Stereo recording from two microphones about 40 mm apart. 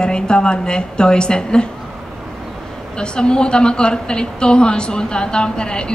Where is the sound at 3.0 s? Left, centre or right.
Left.